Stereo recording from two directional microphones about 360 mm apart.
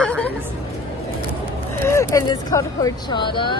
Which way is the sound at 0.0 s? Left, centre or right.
Centre.